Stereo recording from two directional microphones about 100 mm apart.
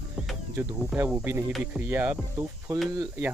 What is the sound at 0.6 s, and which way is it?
Speech, 25° right (ahead or behind).